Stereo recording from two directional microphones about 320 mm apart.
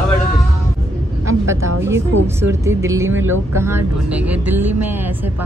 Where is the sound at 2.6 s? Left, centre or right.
Centre.